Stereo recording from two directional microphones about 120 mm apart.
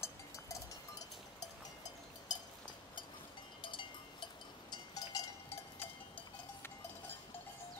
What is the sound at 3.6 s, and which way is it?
Cowbell, 45° left (ahead or behind).